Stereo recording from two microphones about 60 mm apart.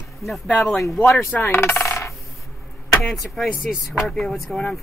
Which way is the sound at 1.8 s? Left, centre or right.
Left.